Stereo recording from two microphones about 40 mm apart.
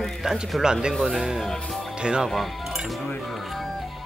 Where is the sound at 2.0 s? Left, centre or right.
Right.